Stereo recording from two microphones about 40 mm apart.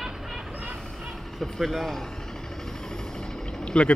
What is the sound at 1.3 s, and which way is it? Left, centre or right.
Speech, centre.